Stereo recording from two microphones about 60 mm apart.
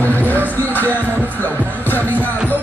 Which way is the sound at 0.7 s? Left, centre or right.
Left.